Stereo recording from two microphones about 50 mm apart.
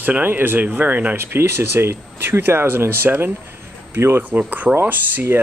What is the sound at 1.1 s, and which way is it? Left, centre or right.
Speech, right.